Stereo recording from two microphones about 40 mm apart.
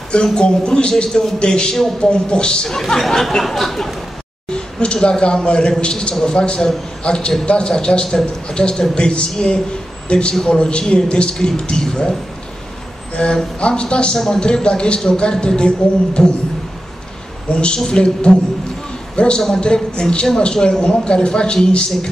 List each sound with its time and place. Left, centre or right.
0.1 s speech: centre
3.1 s speech: centre
4.5 s a man's voice: left
17.5 s a man's voice: left